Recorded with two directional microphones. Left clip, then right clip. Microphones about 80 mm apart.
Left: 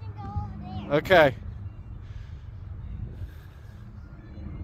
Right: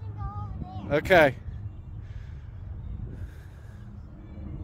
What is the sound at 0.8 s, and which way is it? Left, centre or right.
Speech, right.